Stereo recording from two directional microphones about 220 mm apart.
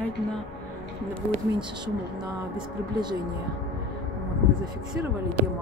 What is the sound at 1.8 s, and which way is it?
Speech, 20° right (ahead or behind).